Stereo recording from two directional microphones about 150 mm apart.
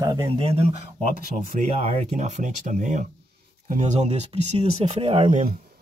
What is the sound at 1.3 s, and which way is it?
Speech, 55° right (ahead or behind).